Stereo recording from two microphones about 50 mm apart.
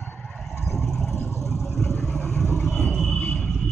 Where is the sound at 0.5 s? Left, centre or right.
Centre.